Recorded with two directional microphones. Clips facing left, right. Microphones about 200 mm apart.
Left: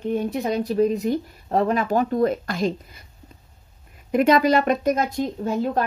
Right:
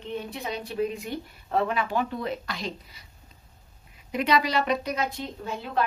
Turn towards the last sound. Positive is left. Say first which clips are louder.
# left 10 dB
turn(degrees=45)  # may be behind; listen again after turning